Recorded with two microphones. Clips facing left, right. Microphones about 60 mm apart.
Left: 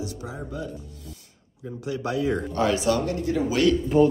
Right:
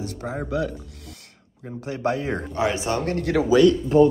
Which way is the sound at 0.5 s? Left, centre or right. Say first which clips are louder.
Right 10 dB; right.